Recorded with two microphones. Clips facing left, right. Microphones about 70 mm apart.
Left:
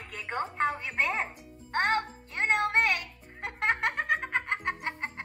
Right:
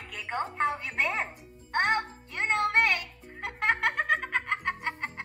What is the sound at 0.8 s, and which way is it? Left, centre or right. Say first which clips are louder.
Speech: even; left.